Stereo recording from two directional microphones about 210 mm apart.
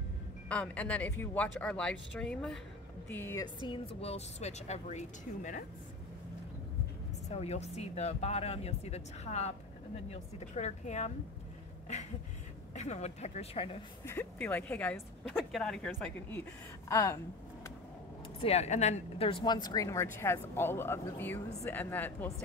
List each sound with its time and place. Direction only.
0.5 s a woman's voice: 5° left (ahead or behind)
3.6 s speech: 25° left (ahead or behind)
7.2 s speech: 30° left (ahead or behind)
12.7 s speech: 30° left (ahead or behind)
14.0 s a woman's voice: 10° left (ahead or behind)
18.4 s a woman's voice: 30° left (ahead or behind); by 22.3 s 10° left (ahead or behind)